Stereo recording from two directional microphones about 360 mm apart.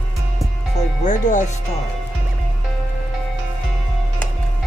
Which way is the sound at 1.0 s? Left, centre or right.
Left.